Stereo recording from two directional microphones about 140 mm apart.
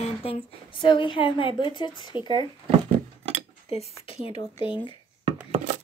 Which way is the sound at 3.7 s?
45° left (ahead or behind).